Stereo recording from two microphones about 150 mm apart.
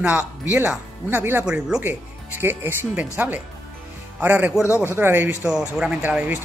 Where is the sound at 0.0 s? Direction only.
15° right (ahead or behind).